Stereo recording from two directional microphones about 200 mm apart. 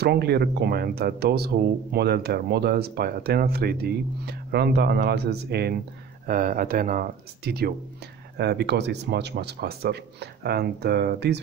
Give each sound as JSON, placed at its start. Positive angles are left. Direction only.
{"t": 0.0, "sound": "speech", "side_deg": -55}
{"t": 6.2, "sound": "speech", "side_deg": -40}